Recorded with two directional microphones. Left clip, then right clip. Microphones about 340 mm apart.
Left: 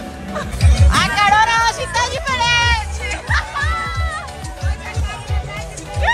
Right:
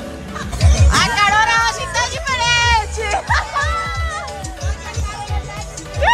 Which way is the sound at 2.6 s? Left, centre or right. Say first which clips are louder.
Right 3 dB; centre.